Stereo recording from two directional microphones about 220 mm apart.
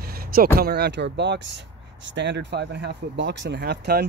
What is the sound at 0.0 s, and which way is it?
Speech, 40° right (ahead or behind).